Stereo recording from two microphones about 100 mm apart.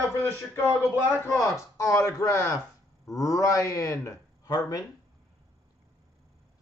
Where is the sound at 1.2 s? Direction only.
30° left (ahead or behind).